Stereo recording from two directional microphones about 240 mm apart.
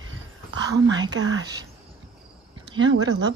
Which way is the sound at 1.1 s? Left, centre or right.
Right.